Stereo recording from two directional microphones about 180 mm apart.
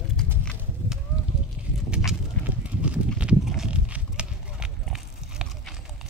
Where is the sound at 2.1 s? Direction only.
5° right (ahead or behind).